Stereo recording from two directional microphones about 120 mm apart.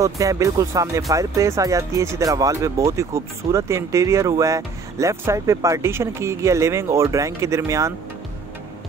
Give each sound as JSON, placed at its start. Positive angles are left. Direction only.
{"t": 0.0, "sound": "speech", "side_deg": -25}